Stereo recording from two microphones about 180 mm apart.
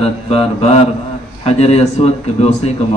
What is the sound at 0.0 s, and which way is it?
A man's voice, 35° left (ahead or behind).